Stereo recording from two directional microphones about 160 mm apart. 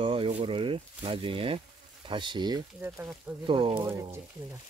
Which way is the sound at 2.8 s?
10° right (ahead or behind).